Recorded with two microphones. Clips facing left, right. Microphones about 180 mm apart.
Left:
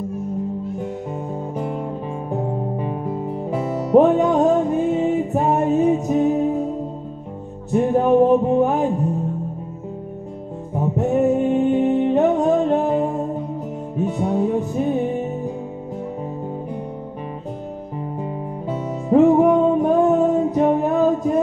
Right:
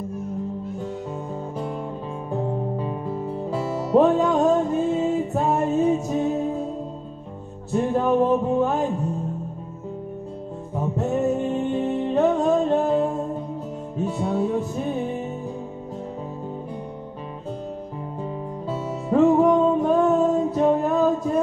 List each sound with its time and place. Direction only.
2.3 s music: 20° left (ahead or behind)
7.7 s music: 20° left (ahead or behind)
10.7 s music: 15° left (ahead or behind)
19.0 s music: 20° left (ahead or behind)